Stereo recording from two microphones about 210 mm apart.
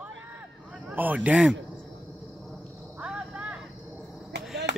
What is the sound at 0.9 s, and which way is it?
Speech, 10° right (ahead or behind).